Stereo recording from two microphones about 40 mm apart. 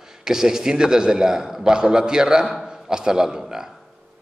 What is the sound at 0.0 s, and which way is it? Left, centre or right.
A man's voice, centre.